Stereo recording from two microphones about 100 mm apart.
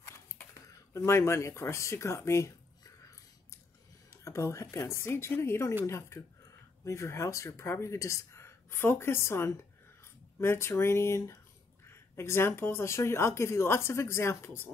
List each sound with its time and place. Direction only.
0.9 s speech: 25° left (ahead or behind)
4.2 s speech: 30° left (ahead or behind)